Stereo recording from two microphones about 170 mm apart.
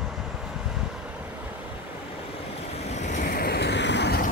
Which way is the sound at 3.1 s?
55° left (ahead or behind).